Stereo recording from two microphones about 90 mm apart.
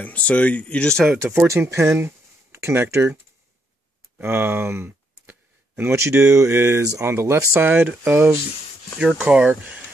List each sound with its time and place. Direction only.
0.0 s speech: 15° left (ahead or behind)
1.5 s speech: 30° right (ahead or behind)
4.2 s speech: 25° right (ahead or behind)
8.9 s speech: 15° right (ahead or behind)